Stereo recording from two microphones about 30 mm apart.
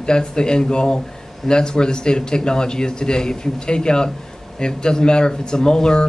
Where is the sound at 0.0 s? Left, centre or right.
Left.